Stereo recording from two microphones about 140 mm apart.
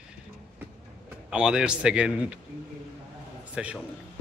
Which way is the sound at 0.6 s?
10° right (ahead or behind).